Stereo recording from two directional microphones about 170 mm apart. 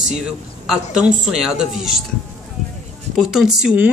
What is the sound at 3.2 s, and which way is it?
Speech, 5° right (ahead or behind).